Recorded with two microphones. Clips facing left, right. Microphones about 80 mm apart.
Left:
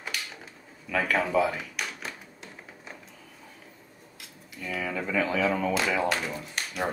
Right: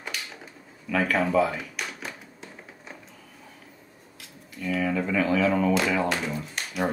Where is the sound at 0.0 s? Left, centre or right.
Centre.